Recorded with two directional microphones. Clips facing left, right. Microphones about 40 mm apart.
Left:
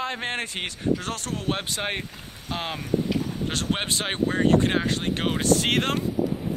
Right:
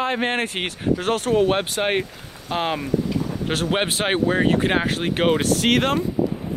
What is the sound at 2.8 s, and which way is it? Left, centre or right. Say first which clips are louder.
Speech: right 2 dB; right.